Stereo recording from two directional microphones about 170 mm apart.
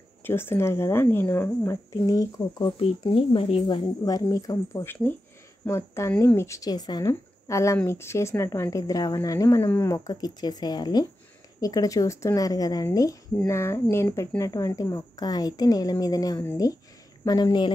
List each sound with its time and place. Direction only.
0.2 s speech: 15° left (ahead or behind)